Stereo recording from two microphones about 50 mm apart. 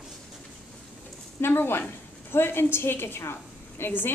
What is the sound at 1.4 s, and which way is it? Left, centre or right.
A woman's voice, left.